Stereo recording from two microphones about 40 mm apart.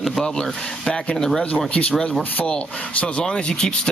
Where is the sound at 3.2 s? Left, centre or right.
Left.